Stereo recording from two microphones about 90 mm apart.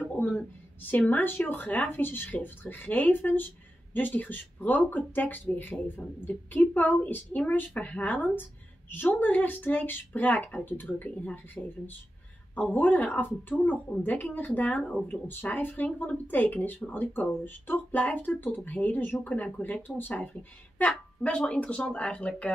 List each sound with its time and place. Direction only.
0.1 s a woman's voice: 15° left (ahead or behind)